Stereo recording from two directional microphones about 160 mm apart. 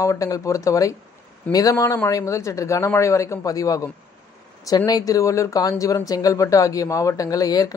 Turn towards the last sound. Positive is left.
turn(degrees=25)  # may be behind; listen again after turning